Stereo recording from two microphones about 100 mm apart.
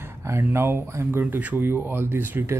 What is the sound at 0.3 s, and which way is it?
Speech, 20° right (ahead or behind).